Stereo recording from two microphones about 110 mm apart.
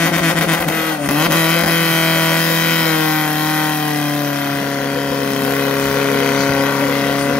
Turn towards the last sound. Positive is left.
turn(degrees=10)  # may be behind; listen again after turning